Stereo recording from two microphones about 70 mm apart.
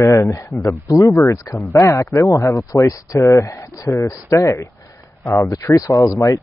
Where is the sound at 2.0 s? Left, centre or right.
Left.